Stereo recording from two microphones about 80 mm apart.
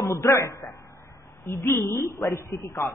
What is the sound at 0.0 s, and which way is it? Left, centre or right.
A man's voice, left.